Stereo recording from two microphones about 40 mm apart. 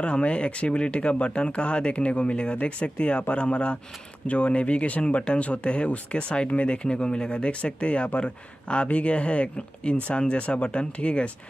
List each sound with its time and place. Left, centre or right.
0.0 s speech: left